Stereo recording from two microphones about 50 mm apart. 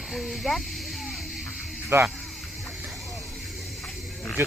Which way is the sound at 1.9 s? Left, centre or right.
Right.